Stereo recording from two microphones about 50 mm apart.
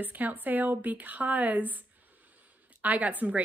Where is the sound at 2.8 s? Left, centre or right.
Right.